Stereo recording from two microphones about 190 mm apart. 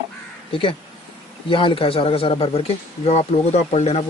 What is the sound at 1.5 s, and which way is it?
A man's voice, 25° left (ahead or behind).